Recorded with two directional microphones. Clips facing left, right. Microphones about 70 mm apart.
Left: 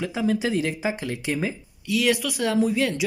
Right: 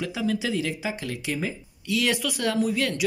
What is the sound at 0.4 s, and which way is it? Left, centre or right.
Speech, left.